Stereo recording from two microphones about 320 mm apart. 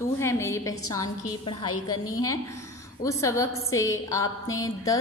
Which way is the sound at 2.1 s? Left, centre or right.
Centre.